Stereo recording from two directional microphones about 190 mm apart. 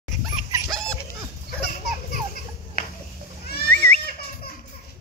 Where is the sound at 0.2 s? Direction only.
Centre (ahead or behind).